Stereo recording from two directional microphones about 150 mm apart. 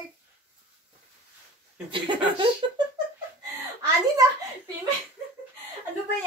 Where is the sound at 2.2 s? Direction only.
35° right (ahead or behind).